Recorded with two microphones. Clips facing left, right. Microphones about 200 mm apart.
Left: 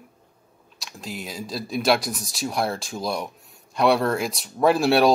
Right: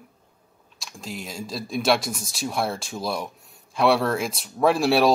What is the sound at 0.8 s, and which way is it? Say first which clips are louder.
Speech: left 1 dB; centre (ahead or behind).